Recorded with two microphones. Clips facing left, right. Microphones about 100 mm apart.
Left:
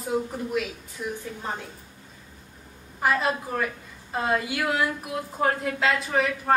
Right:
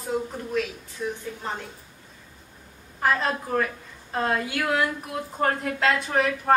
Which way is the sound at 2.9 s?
5° left (ahead or behind).